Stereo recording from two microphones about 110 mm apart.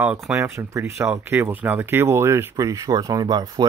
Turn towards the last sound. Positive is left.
turn(degrees=-35)  # may be behind; listen again after turning